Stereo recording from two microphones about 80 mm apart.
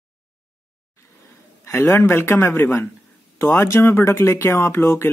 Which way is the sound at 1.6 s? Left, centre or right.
Left.